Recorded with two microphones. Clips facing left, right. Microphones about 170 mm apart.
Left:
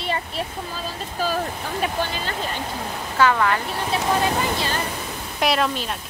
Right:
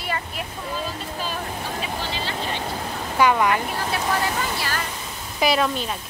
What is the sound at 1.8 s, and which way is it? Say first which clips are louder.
Speech: left 8 dB; 50° left (ahead or behind).